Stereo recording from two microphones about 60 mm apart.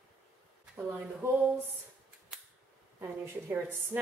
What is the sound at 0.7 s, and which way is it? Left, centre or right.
Speech, right.